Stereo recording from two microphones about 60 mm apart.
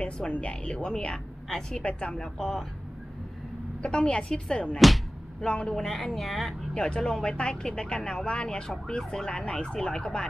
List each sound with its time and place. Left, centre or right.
0.0 s a woman's voice: left; by 2.6 s centre
3.8 s speech: centre
4.7 s speech: centre
5.4 s speech: centre
5.9 s speech: centre